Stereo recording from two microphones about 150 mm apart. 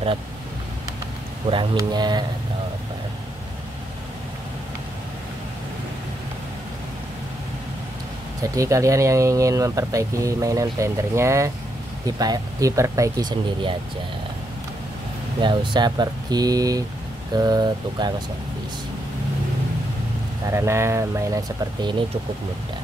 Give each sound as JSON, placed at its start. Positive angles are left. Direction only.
{"t": 1.5, "sound": "speech", "side_deg": -30}
{"t": 8.4, "sound": "speech", "side_deg": -20}
{"t": 15.4, "sound": "speech", "side_deg": -30}
{"t": 20.4, "sound": "speech", "side_deg": -20}